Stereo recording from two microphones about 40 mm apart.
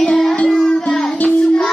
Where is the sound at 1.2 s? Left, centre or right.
Left.